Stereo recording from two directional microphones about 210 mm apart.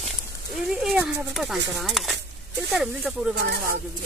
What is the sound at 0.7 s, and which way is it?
Speech, centre (ahead or behind).